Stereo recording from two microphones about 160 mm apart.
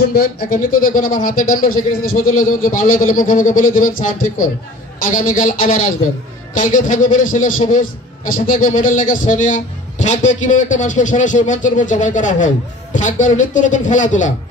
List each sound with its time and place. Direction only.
0.1 s a man's voice: 70° left (ahead or behind); by 14.3 s 50° left (ahead or behind)